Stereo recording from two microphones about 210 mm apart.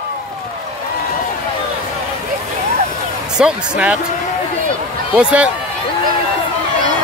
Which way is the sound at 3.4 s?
5° right (ahead or behind).